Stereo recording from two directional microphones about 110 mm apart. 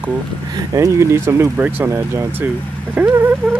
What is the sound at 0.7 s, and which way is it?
Speech, 25° right (ahead or behind).